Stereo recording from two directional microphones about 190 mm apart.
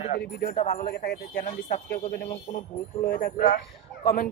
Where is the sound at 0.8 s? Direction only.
55° left (ahead or behind).